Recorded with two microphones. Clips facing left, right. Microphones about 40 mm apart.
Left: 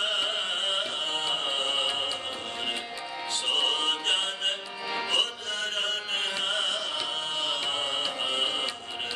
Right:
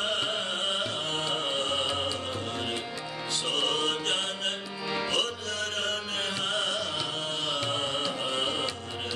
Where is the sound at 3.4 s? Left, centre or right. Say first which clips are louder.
Left 2 dB; left.